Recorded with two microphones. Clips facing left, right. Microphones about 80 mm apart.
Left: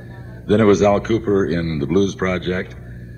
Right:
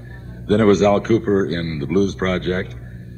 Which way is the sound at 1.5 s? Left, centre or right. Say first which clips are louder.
Left 2 dB; centre.